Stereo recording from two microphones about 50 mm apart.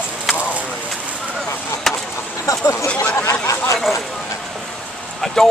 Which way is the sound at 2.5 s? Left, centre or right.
Left.